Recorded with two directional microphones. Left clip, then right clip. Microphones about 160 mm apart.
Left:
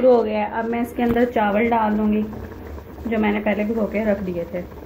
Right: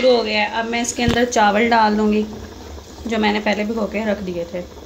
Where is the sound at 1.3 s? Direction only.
30° right (ahead or behind).